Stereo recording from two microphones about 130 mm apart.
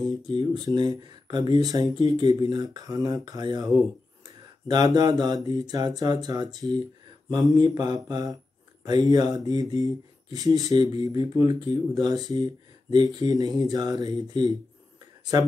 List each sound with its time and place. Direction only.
0.3 s speech: 35° right (ahead or behind)